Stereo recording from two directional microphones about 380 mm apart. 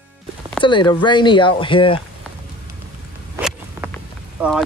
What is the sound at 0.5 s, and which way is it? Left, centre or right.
Speech, centre.